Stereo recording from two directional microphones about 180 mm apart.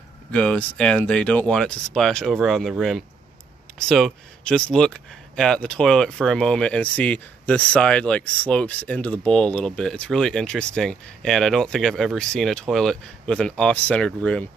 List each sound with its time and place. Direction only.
0.3 s speech: 5° left (ahead or behind)
3.7 s speech: 5° left (ahead or behind)